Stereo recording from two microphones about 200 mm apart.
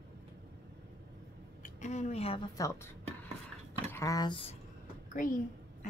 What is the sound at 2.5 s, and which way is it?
Speech, 15° left (ahead or behind).